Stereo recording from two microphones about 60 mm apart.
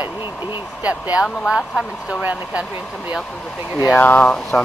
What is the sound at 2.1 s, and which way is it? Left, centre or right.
Speech, right.